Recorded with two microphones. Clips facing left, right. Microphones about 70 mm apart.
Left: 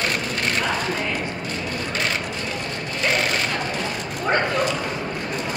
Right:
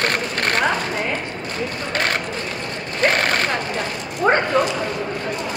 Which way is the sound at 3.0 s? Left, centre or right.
Right.